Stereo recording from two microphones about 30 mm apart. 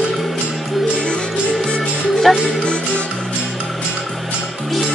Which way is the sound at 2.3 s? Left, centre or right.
Centre.